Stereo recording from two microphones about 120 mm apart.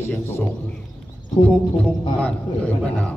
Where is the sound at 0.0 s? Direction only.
20° left (ahead or behind).